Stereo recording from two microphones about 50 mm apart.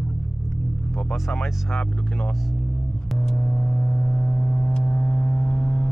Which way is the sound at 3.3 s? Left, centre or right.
Centre.